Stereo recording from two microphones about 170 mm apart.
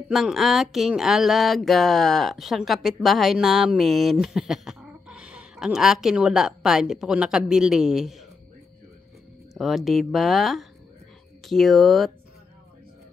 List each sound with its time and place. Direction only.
0.1 s speech: centre (ahead or behind)
9.5 s speech: centre (ahead or behind)